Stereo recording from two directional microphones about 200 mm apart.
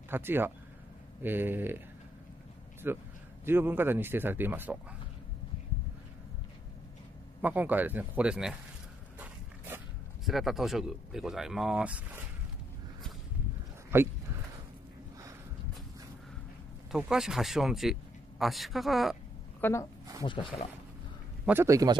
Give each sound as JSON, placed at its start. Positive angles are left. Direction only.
{"t": 0.1, "sound": "speech", "side_deg": -10}
{"t": 2.8, "sound": "speech", "side_deg": -10}
{"t": 7.4, "sound": "speech", "side_deg": -10}
{"t": 10.2, "sound": "speech", "side_deg": 0}
{"t": 13.9, "sound": "speech", "side_deg": -10}
{"t": 16.9, "sound": "speech", "side_deg": -5}
{"t": 19.6, "sound": "a woman's voice", "side_deg": 15}
{"t": 20.2, "sound": "speech", "side_deg": 25}
{"t": 21.5, "sound": "speech", "side_deg": -15}